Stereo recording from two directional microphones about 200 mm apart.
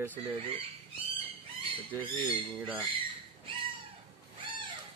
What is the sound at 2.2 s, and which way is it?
Speech, 25° right (ahead or behind).